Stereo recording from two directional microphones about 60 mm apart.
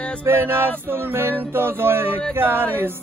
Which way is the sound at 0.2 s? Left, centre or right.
Right.